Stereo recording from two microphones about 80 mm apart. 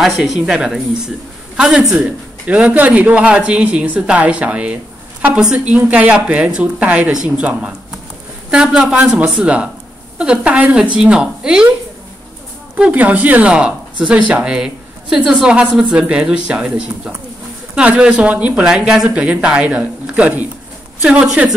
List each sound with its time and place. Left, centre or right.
0.0 s speech: centre
2.0 s speech: centre
12.7 s speech: centre